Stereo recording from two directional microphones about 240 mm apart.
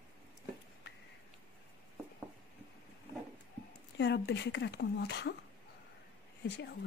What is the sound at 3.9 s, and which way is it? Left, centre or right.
Speech, left.